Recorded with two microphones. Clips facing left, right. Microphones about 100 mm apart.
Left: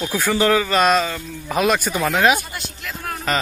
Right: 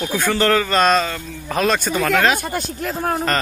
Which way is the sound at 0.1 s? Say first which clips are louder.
Even; 10° left (ahead or behind).